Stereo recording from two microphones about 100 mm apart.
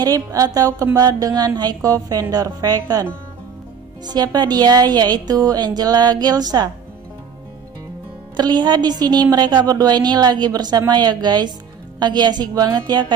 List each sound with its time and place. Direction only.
0.0 s a woman's voice: 35° right (ahead or behind)
8.4 s a woman's voice: 45° right (ahead or behind)